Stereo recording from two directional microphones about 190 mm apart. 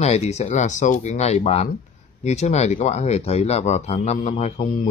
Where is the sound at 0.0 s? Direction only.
35° left (ahead or behind).